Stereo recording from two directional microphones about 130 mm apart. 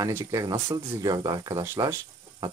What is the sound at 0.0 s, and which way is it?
Speech, 25° right (ahead or behind).